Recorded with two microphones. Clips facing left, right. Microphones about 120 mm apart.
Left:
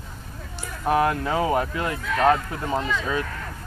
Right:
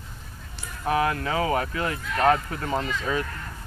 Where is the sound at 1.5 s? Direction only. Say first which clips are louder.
Left 2 dB; 10° left (ahead or behind).